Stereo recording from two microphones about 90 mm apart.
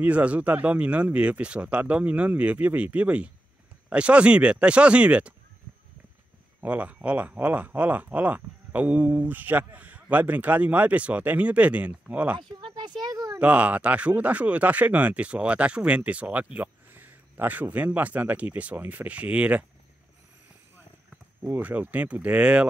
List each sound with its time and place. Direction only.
0.0 s speech: 15° right (ahead or behind)
6.6 s speech: 15° right (ahead or behind)
12.4 s speech: 60° right (ahead or behind)
13.4 s speech: 15° right (ahead or behind)
21.4 s speech: 20° right (ahead or behind)